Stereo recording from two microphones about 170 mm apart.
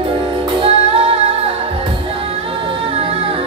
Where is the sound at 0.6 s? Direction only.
35° right (ahead or behind).